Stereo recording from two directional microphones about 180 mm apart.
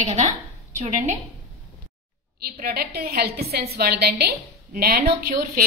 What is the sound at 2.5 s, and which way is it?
A woman's voice, 55° right (ahead or behind).